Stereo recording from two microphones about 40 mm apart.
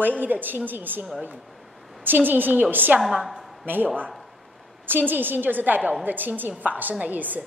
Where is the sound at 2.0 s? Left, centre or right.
Right.